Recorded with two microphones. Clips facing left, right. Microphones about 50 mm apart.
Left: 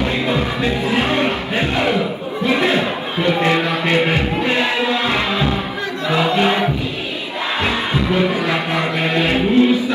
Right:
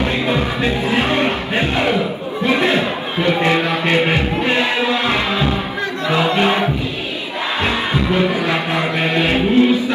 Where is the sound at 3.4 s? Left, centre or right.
Right.